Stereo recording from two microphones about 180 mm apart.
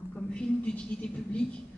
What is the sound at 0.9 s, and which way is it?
Speech, 5° left (ahead or behind).